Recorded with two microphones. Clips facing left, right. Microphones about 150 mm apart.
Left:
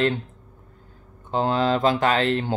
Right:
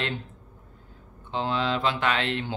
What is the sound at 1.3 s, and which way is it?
Speech, 45° left (ahead or behind).